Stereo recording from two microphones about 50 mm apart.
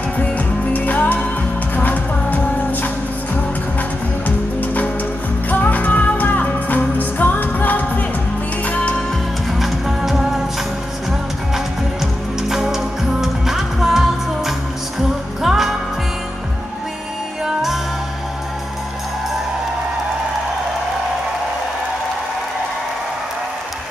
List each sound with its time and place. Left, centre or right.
0.7 s music: left
4.6 s music: left
9.5 s music: centre